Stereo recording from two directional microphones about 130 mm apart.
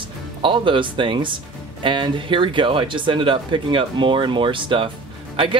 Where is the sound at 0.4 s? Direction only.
40° right (ahead or behind).